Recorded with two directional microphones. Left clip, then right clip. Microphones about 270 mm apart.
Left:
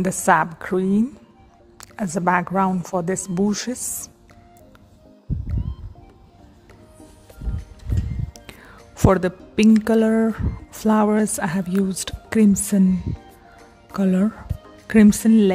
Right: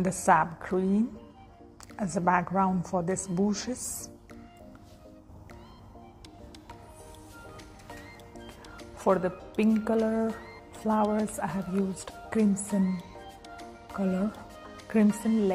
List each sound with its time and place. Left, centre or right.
0.0 s speech: left
3.4 s speech: left
8.5 s speech: left
13.9 s speech: left